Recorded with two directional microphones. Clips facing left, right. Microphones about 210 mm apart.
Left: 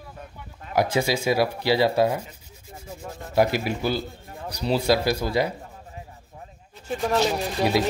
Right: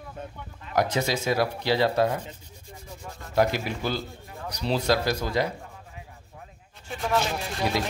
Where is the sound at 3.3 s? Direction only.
10° left (ahead or behind).